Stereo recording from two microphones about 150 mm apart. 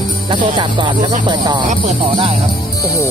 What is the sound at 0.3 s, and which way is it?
Music, 30° right (ahead or behind).